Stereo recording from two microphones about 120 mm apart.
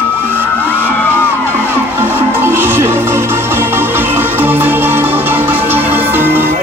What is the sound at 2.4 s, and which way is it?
Music, 20° right (ahead or behind).